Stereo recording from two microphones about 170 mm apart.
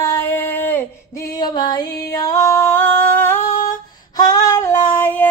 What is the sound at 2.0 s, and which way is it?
Female singing, 20° left (ahead or behind).